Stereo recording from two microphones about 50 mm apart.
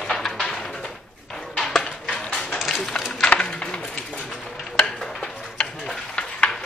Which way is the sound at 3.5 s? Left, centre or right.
Centre.